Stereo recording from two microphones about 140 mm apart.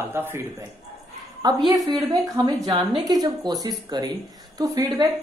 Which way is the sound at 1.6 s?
30° right (ahead or behind).